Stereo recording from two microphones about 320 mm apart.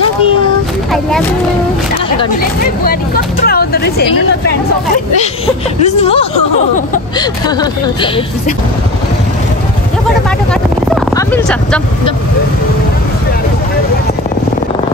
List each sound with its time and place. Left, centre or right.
2.6 s speech: left
5.9 s speech: centre
10.5 s vehicle: centre